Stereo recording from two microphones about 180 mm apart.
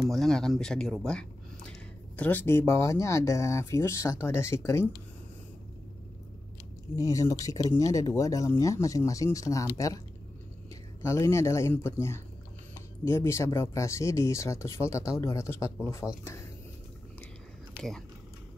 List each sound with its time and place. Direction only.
0.1 s speech: centre (ahead or behind)
7.0 s speech: 15° left (ahead or behind)
11.0 s speech: 15° left (ahead or behind)
17.7 s speech: 5° left (ahead or behind)